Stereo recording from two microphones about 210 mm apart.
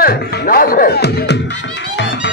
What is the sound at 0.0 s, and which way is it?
Speech, 45° left (ahead or behind).